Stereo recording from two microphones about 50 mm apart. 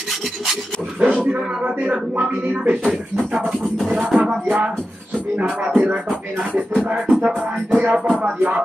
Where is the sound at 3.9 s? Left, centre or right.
Right.